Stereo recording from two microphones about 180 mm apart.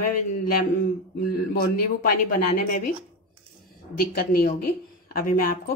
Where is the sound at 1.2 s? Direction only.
55° left (ahead or behind).